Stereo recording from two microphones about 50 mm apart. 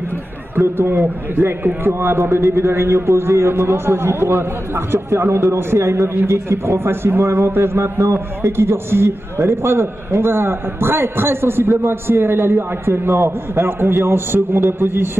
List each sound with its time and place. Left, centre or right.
0.6 s a man's voice: right
6.2 s a man's voice: right
6.6 s a man's voice: right